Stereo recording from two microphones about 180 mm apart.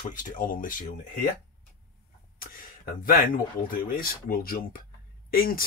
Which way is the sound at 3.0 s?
50° left (ahead or behind).